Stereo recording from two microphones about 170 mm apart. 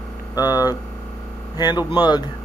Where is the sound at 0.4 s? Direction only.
20° left (ahead or behind).